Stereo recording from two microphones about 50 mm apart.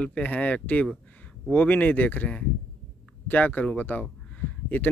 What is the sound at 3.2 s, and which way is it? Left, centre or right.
Speech, left.